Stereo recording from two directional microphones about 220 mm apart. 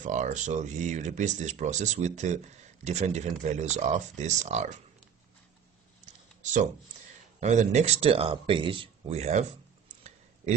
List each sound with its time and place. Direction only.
0.0 s speech: 35° right (ahead or behind)
6.0 s a sound: 35° right (ahead or behind)
7.3 s speech: 30° right (ahead or behind)